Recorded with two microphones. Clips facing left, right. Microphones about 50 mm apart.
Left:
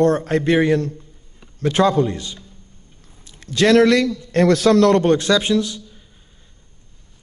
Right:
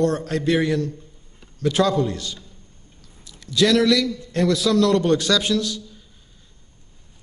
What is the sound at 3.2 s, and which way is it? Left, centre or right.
A man's voice, left.